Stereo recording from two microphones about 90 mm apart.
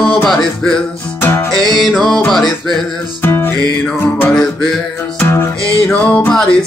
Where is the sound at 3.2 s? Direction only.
30° left (ahead or behind).